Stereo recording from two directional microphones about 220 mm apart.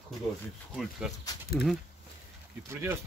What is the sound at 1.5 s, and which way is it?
Speech, 45° left (ahead or behind).